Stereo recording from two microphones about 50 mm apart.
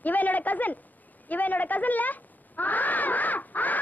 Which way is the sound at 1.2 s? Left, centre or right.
Left.